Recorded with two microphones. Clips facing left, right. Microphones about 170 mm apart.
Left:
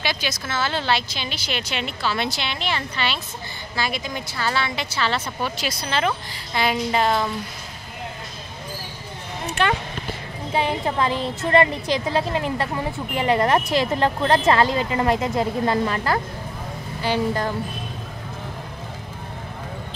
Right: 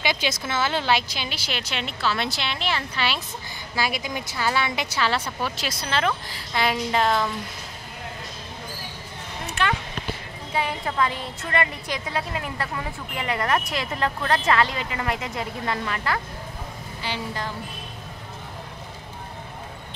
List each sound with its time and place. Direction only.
0.0 s a woman's voice: 20° right (ahead or behind)
5.4 s a woman's voice: centre (ahead or behind)
10.5 s a woman's voice: 30° left (ahead or behind)
17.0 s a woman's voice: 45° left (ahead or behind)